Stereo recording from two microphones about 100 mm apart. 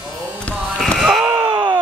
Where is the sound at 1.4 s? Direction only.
55° right (ahead or behind).